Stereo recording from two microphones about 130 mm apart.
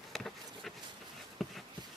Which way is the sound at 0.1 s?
Centre (ahead or behind).